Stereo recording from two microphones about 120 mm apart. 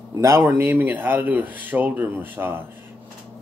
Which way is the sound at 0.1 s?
25° right (ahead or behind).